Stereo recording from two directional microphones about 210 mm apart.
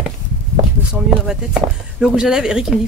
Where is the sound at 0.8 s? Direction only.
10° right (ahead or behind).